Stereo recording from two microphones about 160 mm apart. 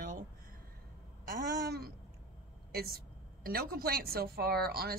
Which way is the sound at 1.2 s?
75° right (ahead or behind).